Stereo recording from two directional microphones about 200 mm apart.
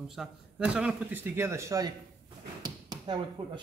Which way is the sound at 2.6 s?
20° right (ahead or behind).